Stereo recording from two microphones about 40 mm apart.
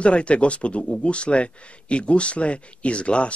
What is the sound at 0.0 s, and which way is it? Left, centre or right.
Speech, left.